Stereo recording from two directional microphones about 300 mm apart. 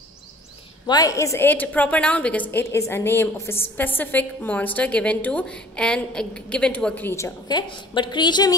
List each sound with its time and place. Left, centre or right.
0.8 s a woman's voice: centre